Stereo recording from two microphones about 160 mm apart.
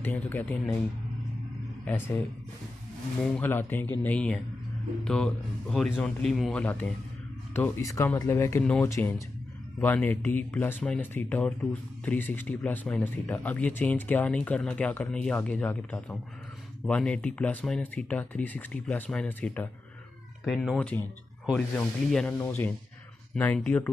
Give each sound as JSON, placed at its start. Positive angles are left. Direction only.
{"t": 0.0, "sound": "speech", "side_deg": 10}
{"t": 1.9, "sound": "a man's voice", "side_deg": 10}